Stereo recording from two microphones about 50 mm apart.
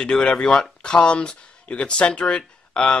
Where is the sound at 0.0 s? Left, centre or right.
Centre.